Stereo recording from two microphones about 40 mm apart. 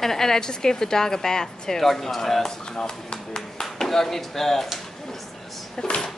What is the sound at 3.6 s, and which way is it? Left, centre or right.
Speech, centre.